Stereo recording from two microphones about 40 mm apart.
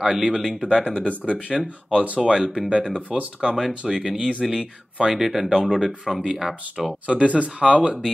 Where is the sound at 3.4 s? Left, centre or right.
Centre.